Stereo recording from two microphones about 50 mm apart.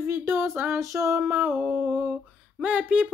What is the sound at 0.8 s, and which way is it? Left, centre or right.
Female singing, right.